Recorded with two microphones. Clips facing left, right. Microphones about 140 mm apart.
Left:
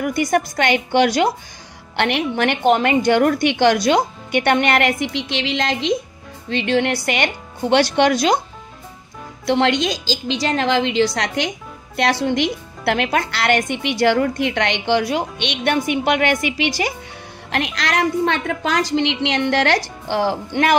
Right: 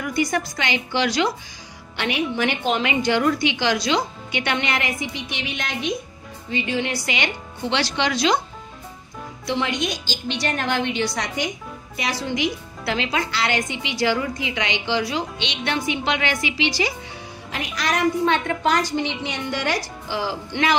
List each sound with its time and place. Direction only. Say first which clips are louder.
0.0 s speech: left 5 dB; 50° left (ahead or behind)
2.0 s a woman's voice: left 4 dB; 65° left (ahead or behind); by 5.9 s 90° left
6.5 s speech: left 6 dB; 70° left (ahead or behind)
7.1 s speech: left 5 dB; 55° left (ahead or behind)
9.5 s a woman's voice: left 7 dB; 75° left (ahead or behind)
12.0 s a woman's voice: left 6 dB; 65° left (ahead or behind)
17.5 s a woman's voice: left 4 dB; 80° left; by 20.7 s 55° left (ahead or behind)